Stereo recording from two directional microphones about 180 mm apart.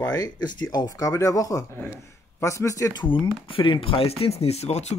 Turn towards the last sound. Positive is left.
turn(degrees=35)  # may be behind; listen again after turning